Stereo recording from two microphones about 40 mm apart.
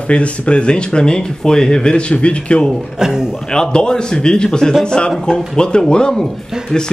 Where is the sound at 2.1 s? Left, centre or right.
Left.